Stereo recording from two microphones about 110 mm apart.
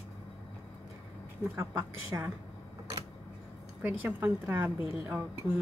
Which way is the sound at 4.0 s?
20° right (ahead or behind).